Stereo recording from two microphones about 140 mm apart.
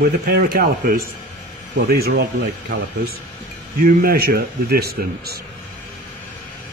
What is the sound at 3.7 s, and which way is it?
A man's voice, 90° right.